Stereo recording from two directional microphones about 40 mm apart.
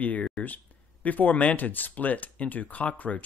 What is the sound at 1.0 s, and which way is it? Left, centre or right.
Speech, left.